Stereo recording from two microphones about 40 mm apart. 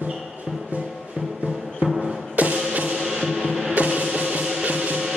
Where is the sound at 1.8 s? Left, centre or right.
Right.